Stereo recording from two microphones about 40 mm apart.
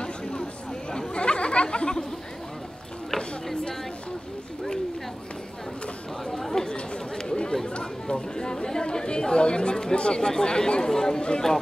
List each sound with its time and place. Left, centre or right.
0.0 s a sound: left
0.9 s chatter: left
6.2 s speech: centre